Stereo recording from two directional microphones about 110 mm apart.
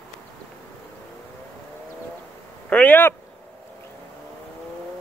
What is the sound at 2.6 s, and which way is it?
Speech, 15° left (ahead or behind).